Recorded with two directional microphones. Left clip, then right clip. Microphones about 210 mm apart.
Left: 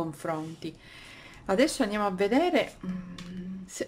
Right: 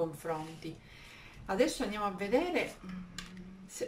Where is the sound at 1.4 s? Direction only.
45° left (ahead or behind).